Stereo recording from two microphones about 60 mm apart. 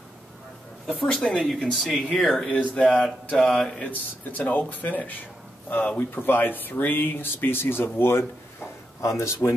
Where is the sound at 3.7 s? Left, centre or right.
Left.